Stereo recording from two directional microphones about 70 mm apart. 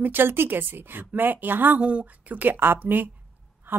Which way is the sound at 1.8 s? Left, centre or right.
Centre.